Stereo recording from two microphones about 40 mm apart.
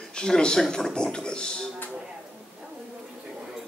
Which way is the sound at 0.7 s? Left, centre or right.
Centre.